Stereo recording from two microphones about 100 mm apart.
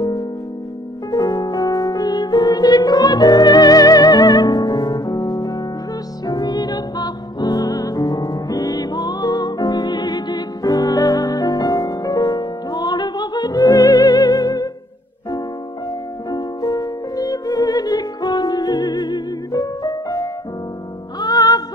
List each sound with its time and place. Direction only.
0.0 s music: 40° left (ahead or behind)
16.3 s music: 40° left (ahead or behind)